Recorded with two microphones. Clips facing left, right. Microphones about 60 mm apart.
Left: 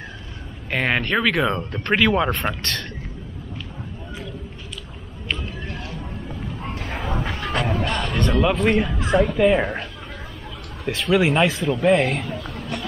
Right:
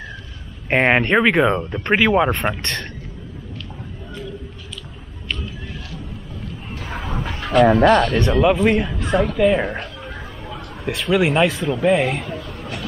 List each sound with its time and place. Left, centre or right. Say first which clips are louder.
0.7 s speech: right 6 dB; right; by 2.9 s centre
6.9 s a sound: even; centre
7.6 s speech: right 15 dB; right
8.2 s speech: right 4 dB; centre
8.5 s a man's voice: right 2 dB; centre